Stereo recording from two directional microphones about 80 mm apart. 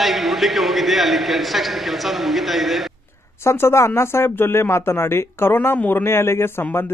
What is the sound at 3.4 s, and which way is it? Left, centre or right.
Speech, left.